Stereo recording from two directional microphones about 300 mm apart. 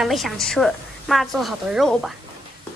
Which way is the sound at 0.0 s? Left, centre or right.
Centre.